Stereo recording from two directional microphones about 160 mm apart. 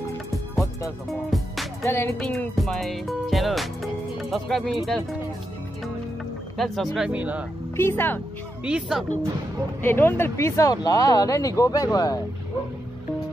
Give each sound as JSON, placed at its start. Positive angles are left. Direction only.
{"t": 1.3, "sound": "music", "side_deg": 0}
{"t": 1.9, "sound": "speech", "side_deg": 15}
{"t": 2.1, "sound": "speech", "side_deg": 0}
{"t": 6.6, "sound": "speech", "side_deg": 0}
{"t": 7.7, "sound": "speech", "side_deg": 15}
{"t": 8.6, "sound": "speech", "side_deg": -5}
{"t": 9.8, "sound": "speech", "side_deg": 15}